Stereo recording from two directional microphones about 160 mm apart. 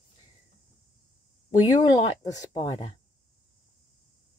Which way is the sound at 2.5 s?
30° left (ahead or behind).